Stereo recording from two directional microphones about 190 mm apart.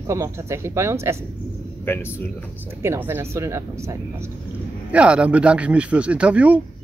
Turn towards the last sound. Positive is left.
turn(degrees=-5)  # may be behind; listen again after turning